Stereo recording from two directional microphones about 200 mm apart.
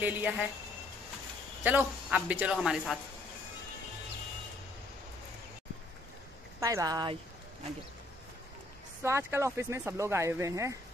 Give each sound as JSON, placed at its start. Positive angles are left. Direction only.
{"t": 0.0, "sound": "speech", "side_deg": -10}
{"t": 1.6, "sound": "a man's voice", "side_deg": -10}
{"t": 6.6, "sound": "speech", "side_deg": -15}
{"t": 9.0, "sound": "speech", "side_deg": -15}